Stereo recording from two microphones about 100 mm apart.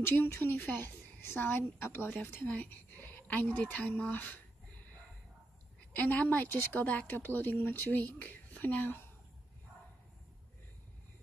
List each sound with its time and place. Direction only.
0.2 s speech: 20° left (ahead or behind)
5.9 s speech: 15° left (ahead or behind)